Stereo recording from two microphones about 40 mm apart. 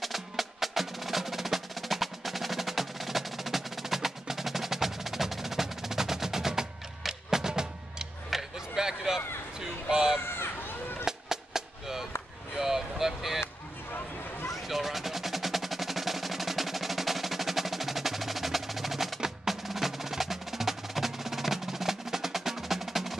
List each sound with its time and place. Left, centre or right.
0.0 s music: centre
8.3 s a sound: centre
10.2 s a sound: left
11.1 s music: centre
12.5 s vehicle: centre
14.5 s music: centre